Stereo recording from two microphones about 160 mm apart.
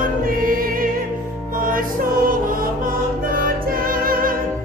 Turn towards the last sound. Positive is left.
turn(degrees=-60)  # may be behind; listen again after turning